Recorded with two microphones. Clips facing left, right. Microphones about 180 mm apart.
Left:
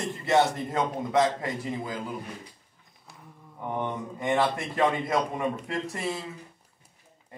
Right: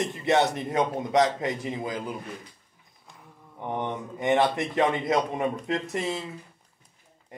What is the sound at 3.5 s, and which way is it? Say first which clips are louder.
A man's voice: right 1 dB; 20° right (ahead or behind).